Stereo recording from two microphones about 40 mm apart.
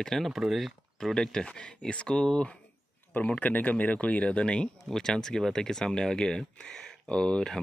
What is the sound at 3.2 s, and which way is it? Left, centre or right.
Speech, left.